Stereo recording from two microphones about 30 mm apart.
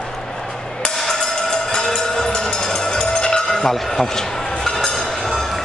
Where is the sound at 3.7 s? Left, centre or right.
Centre.